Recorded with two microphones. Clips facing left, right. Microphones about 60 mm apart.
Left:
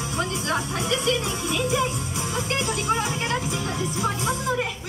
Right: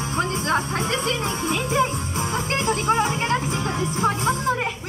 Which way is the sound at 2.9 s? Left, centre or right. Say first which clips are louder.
Right 4 dB; right.